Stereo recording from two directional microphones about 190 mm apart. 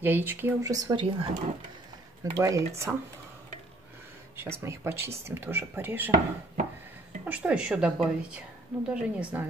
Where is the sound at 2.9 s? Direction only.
Centre (ahead or behind).